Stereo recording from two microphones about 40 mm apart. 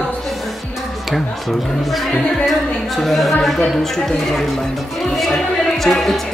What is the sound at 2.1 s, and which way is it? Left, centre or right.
Music, left.